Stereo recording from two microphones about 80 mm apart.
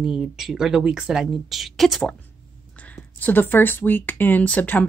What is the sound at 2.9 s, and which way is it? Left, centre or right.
Speech, left.